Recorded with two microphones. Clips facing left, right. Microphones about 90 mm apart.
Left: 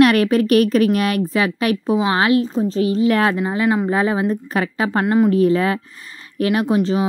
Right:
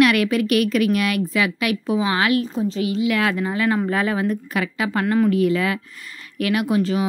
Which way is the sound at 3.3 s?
25° left (ahead or behind).